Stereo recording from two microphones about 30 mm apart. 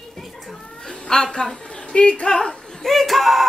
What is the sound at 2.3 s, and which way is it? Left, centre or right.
Speech, centre.